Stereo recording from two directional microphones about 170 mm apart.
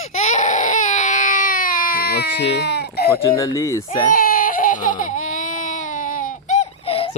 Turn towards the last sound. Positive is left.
turn(degrees=35)  # may be behind; listen again after turning